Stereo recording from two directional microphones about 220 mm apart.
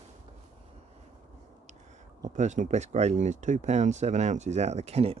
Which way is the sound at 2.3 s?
35° right (ahead or behind).